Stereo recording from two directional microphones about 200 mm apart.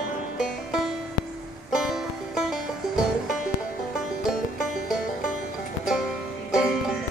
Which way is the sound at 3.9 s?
Centre (ahead or behind).